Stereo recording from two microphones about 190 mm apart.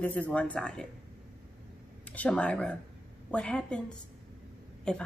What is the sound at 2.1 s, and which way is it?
Speech, 5° left (ahead or behind).